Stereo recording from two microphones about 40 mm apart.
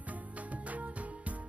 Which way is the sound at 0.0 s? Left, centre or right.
Right.